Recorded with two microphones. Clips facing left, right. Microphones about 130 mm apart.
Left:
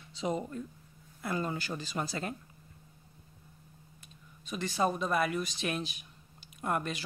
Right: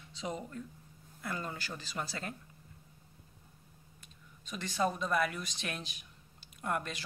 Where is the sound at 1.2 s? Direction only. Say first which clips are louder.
Left 6 dB; 20° left (ahead or behind).